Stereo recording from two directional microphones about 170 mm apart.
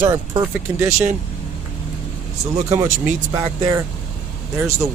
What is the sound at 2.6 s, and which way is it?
Speech, 15° right (ahead or behind).